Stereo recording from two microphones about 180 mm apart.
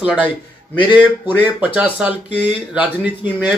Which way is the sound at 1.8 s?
10° right (ahead or behind).